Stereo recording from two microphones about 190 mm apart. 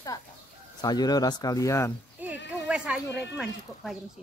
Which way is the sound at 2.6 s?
5° right (ahead or behind).